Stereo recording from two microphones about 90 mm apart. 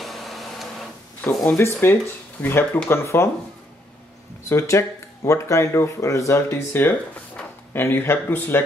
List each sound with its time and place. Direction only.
0.0 s printer: centre (ahead or behind)
1.3 s speech: 5° left (ahead or behind)
1.6 s speech: 30° left (ahead or behind)
4.5 s speech: 30° left (ahead or behind)